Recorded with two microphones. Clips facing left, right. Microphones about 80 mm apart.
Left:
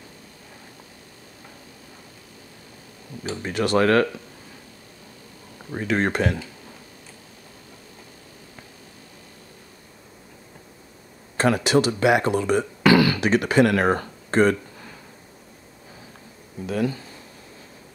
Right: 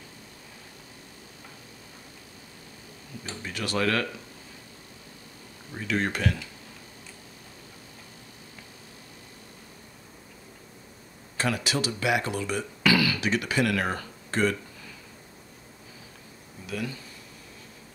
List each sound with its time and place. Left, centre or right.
3.4 s speech: left
5.7 s speech: left
11.3 s speech: left
16.6 s speech: left